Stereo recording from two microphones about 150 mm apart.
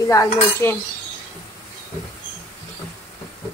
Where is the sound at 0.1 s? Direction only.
20° left (ahead or behind).